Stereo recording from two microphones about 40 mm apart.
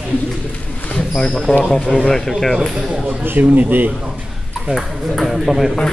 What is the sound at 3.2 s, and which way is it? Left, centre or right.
Speech, right.